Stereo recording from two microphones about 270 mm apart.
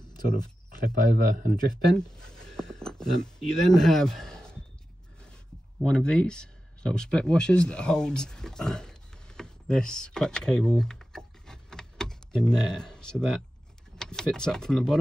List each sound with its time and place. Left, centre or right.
0.8 s a man's voice: right
2.1 s speech: centre
5.8 s speech: centre